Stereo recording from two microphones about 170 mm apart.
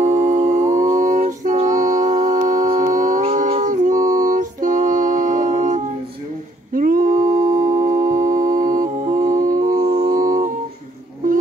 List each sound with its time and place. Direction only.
0.0 s humming: 45° right (ahead or behind)
3.4 s music: 45° right (ahead or behind)